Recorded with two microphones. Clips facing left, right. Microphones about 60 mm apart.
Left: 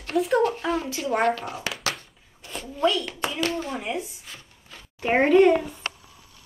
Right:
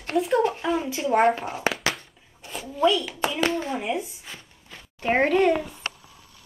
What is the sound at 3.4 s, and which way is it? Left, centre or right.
Speech, right.